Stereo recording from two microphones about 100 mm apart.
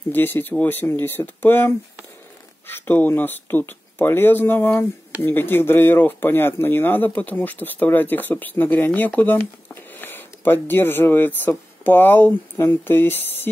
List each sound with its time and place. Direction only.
0.1 s speech: 20° left (ahead or behind)